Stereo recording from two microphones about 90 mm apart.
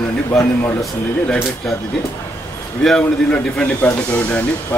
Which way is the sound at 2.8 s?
10° left (ahead or behind).